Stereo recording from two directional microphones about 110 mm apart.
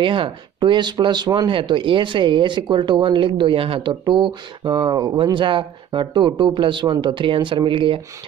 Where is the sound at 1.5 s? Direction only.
50° right (ahead or behind).